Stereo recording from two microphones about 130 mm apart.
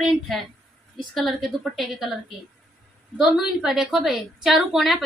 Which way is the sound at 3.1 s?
5° right (ahead or behind).